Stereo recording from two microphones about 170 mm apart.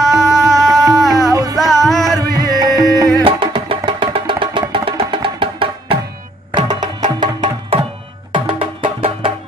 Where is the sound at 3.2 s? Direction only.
30° right (ahead or behind).